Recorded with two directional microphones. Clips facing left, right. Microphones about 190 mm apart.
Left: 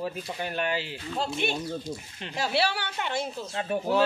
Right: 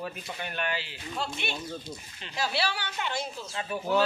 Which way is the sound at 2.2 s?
55° left (ahead or behind).